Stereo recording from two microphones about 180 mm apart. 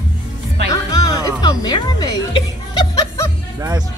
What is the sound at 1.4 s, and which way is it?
Music, 20° left (ahead or behind).